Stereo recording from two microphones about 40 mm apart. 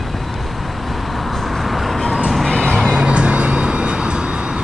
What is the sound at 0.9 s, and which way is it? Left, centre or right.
Vehicle, centre.